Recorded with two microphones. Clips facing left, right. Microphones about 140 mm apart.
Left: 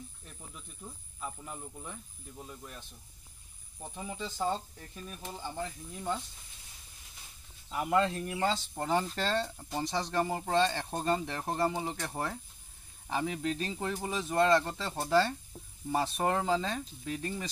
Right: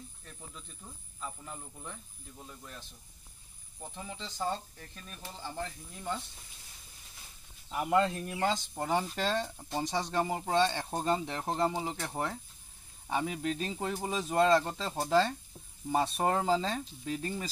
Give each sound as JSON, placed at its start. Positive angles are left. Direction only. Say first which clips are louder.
{"t": 0.2, "sound": "speech", "louder": "right 1 dB", "side_deg": 10}
{"t": 3.8, "sound": "speech", "louder": "left 3 dB", "side_deg": 10}
{"t": 7.7, "sound": "speech", "louder": "right 1 dB", "side_deg": -10}
{"t": 15.0, "sound": "speech", "louder": "even", "side_deg": 0}
{"t": 16.0, "sound": "speech", "louder": "right 1 dB", "side_deg": -25}